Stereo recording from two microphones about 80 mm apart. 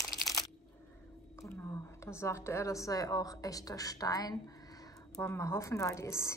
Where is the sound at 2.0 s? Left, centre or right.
Left.